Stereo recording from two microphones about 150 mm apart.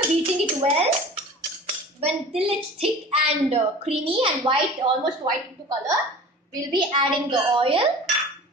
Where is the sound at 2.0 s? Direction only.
40° right (ahead or behind).